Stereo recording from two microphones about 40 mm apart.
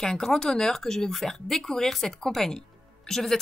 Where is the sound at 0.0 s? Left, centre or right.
Centre.